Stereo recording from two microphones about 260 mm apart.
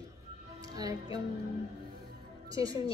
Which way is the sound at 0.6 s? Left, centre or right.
Centre.